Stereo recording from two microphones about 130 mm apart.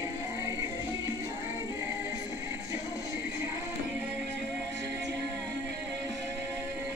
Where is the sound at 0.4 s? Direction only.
25° right (ahead or behind).